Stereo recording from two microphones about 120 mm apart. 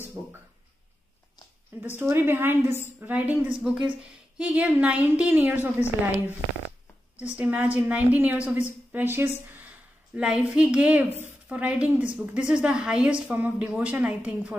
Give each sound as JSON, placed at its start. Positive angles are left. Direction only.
{"t": 1.8, "sound": "a woman's voice", "side_deg": -20}
{"t": 10.1, "sound": "a woman's voice", "side_deg": -10}